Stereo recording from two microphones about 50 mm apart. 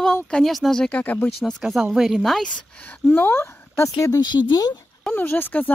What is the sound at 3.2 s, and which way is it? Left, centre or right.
Speech, left.